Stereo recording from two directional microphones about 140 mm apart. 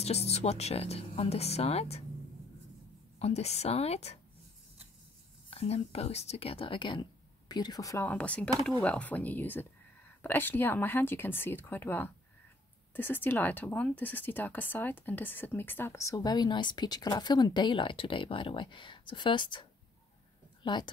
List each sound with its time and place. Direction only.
0.0 s speech: 50° left (ahead or behind)
3.2 s speech: 45° left (ahead or behind)
5.5 s speech: 50° left (ahead or behind); by 8.1 s 25° left (ahead or behind)
8.1 s speech: 10° left (ahead or behind); by 19.6 s 35° left (ahead or behind)
20.6 s a woman's voice: 35° left (ahead or behind)